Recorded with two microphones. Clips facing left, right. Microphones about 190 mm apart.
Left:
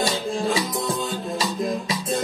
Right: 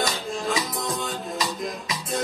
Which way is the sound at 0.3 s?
30° left (ahead or behind).